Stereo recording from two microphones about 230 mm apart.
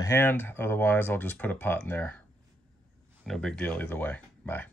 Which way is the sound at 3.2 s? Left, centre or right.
Centre.